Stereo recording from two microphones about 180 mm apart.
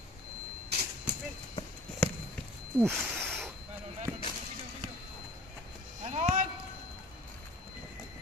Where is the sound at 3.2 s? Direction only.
5° left (ahead or behind).